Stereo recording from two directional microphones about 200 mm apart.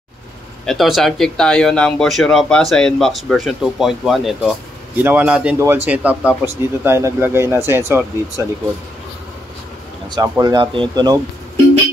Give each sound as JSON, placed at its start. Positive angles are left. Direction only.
{"t": 0.7, "sound": "speech", "side_deg": 0}
{"t": 10.0, "sound": "speech", "side_deg": -20}